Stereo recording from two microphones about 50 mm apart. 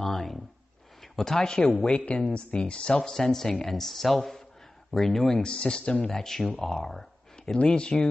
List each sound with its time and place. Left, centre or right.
0.0 s a sound: centre
1.0 s speech: centre
1.6 s a man's voice: left